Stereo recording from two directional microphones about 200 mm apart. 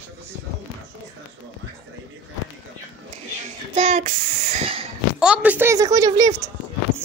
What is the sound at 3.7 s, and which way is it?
Speech, 35° right (ahead or behind).